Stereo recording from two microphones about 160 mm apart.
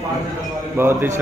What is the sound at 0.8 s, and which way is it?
Speech, 15° right (ahead or behind).